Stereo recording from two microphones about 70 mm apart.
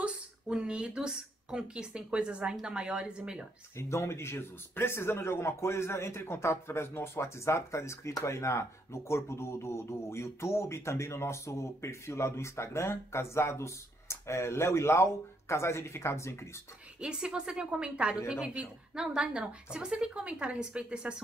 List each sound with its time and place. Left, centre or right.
0.0 s a woman's voice: centre
3.7 s speech: left
17.0 s a woman's voice: centre